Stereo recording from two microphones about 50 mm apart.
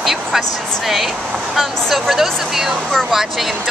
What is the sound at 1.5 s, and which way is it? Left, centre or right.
A woman's voice, centre.